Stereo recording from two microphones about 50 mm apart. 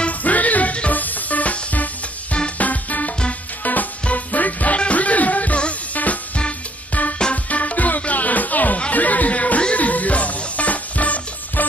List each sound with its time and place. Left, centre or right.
0.0 s music: left
7.4 s music: left